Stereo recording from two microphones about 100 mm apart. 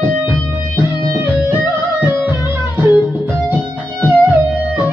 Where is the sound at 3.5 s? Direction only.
20° right (ahead or behind).